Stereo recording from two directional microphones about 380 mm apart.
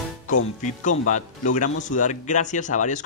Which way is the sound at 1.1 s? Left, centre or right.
Centre.